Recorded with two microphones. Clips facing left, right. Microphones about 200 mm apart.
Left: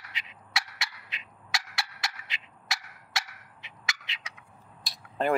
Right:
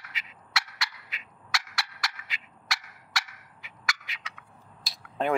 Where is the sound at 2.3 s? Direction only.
20° left (ahead or behind).